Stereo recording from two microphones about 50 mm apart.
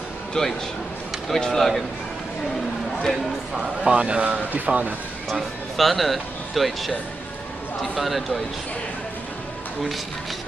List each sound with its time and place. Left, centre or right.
0.3 s speech: centre
3.5 s speech: centre
5.3 s speech: centre
7.9 s speech: centre